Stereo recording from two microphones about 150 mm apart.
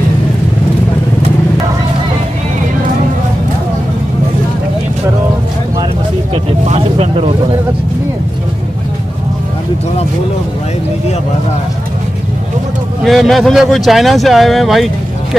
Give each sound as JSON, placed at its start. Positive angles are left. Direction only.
{"t": 6.3, "sound": "vehicle", "side_deg": -40}
{"t": 13.0, "sound": "speech", "side_deg": 0}